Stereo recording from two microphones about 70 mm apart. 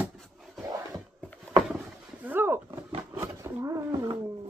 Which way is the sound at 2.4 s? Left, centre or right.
Right.